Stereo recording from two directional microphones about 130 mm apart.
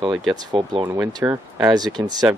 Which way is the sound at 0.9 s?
25° right (ahead or behind).